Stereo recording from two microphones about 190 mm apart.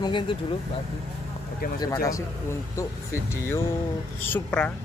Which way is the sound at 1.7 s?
20° left (ahead or behind).